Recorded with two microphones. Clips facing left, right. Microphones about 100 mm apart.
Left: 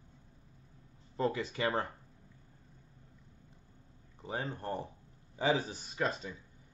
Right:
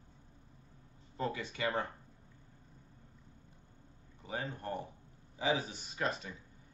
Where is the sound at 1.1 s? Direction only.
30° left (ahead or behind).